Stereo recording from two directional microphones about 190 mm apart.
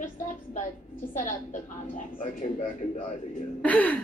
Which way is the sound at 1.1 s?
40° left (ahead or behind).